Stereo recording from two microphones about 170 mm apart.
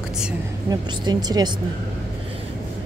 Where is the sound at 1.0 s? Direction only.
25° right (ahead or behind).